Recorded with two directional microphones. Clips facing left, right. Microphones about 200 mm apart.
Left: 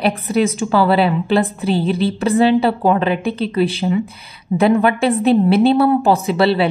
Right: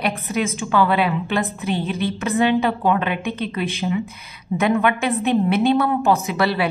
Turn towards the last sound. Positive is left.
turn(degrees=30)  # may be behind; listen again after turning